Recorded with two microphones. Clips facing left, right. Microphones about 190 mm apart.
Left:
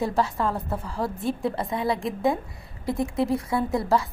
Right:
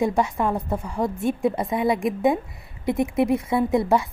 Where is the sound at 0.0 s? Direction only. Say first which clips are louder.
Right 3 dB; 15° right (ahead or behind).